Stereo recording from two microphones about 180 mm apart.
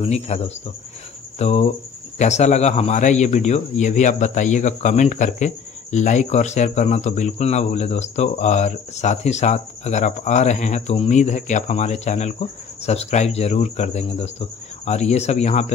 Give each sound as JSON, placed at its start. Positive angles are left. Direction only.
{"t": 0.0, "sound": "speech", "side_deg": 35}